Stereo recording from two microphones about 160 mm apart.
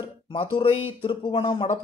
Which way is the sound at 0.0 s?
35° left (ahead or behind).